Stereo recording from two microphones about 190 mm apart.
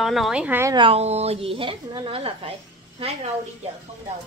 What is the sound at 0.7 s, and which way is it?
A woman's voice, 30° right (ahead or behind).